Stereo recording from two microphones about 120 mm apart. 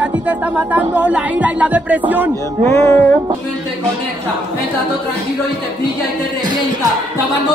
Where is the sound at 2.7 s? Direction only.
25° left (ahead or behind).